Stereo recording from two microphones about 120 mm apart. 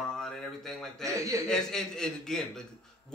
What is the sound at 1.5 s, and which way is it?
Speech, 5° left (ahead or behind).